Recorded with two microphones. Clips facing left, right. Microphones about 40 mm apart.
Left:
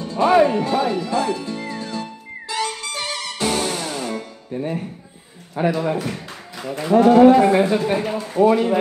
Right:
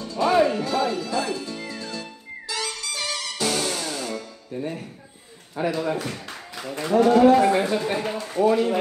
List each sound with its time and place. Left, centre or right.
0.0 s music: left
5.7 s a man's voice: centre
7.0 s speech: left
7.4 s speech: centre